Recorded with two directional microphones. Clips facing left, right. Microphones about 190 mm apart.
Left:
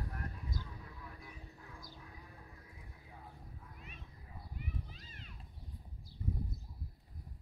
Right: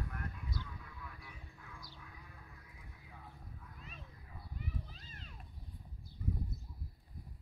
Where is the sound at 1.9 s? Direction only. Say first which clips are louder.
Left 2 dB; 35° left (ahead or behind).